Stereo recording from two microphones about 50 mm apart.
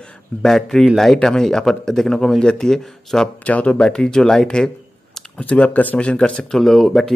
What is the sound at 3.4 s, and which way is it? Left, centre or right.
Speech, left.